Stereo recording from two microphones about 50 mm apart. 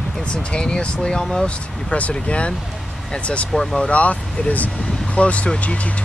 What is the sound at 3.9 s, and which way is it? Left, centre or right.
Speech, left.